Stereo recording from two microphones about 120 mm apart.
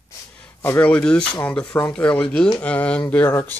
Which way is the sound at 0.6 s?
15° left (ahead or behind).